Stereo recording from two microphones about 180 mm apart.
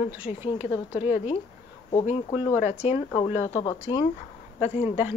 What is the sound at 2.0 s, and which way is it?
Speech, 35° left (ahead or behind).